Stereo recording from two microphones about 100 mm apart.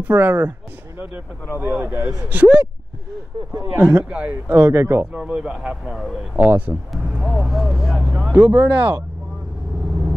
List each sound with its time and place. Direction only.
0.0 s speech: 20° right (ahead or behind)
1.6 s speech: 20° right (ahead or behind)
5.1 s speech: 10° right (ahead or behind)
6.3 s speech: 15° right (ahead or behind)
6.9 s speech: centre (ahead or behind); by 9.0 s 15° right (ahead or behind)